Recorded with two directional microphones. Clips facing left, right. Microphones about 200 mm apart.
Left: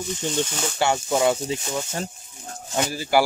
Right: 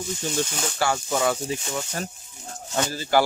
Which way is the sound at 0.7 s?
20° left (ahead or behind).